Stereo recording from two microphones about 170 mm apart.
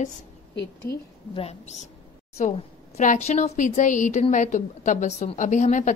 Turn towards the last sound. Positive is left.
turn(degrees=45)  # may be behind; listen again after turning